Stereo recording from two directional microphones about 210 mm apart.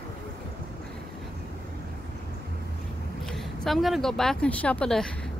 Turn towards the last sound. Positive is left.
turn(degrees=5)  # may be behind; listen again after turning